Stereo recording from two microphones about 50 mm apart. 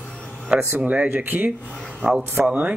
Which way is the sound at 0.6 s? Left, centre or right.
Right.